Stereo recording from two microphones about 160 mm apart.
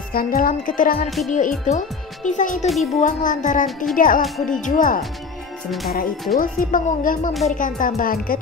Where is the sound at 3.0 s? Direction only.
55° left (ahead or behind).